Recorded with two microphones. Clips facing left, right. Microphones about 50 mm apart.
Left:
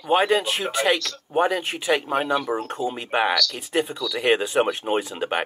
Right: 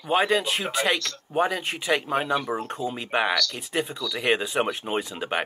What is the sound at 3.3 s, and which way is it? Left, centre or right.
Speech, centre.